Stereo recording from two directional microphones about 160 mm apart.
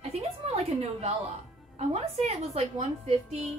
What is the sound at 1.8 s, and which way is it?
A woman's voice, 40° right (ahead or behind).